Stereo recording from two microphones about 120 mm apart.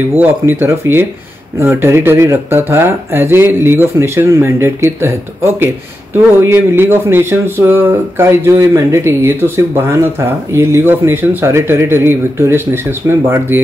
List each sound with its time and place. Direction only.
0.1 s speech: 15° right (ahead or behind)